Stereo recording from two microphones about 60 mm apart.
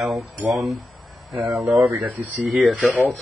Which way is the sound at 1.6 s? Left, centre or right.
Right.